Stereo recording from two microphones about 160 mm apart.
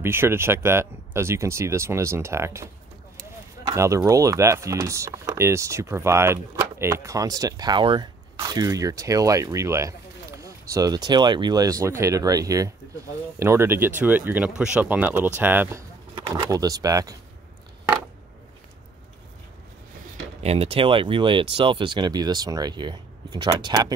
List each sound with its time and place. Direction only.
0.0 s speech: 15° right (ahead or behind)
3.7 s speech: 20° right (ahead or behind)
16.2 s speech: 25° right (ahead or behind)
20.4 s speech: 35° right (ahead or behind)